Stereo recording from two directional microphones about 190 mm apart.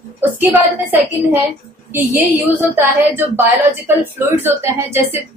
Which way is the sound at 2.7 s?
10° right (ahead or behind).